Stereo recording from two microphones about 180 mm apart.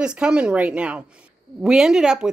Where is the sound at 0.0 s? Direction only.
5° right (ahead or behind).